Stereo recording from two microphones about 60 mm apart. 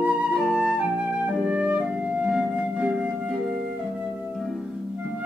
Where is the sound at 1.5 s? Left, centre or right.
Centre.